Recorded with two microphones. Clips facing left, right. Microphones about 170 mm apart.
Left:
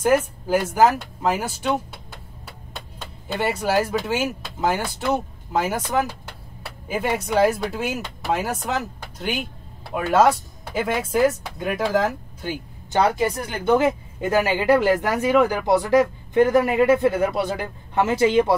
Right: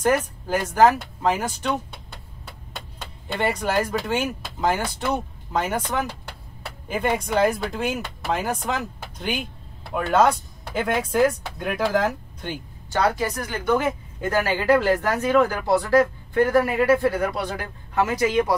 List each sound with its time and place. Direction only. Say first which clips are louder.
0.0 s speech: left 2 dB; 5° left (ahead or behind)
12.9 s speech: left 3 dB; 20° left (ahead or behind)
14.2 s speech: left 2 dB; 15° left (ahead or behind)